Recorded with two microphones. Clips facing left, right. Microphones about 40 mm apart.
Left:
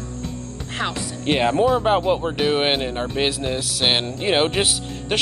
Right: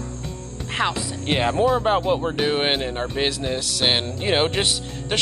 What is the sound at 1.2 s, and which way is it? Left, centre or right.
Speech, centre.